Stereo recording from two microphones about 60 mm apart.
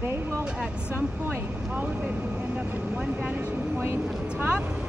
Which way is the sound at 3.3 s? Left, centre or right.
Right.